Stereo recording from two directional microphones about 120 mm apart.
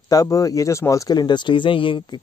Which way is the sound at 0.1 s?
30° left (ahead or behind).